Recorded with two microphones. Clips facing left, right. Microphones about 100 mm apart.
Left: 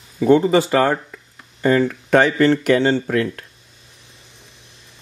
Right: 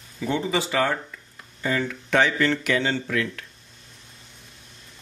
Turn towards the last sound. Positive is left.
turn(degrees=40)  # may be behind; listen again after turning